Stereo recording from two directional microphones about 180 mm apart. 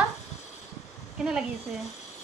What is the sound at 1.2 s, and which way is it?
Speech, 5° right (ahead or behind).